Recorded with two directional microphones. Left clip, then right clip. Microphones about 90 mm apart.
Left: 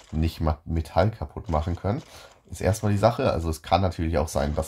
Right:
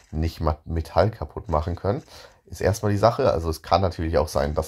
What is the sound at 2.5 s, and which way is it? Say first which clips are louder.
Speech: right 3 dB; 25° right (ahead or behind).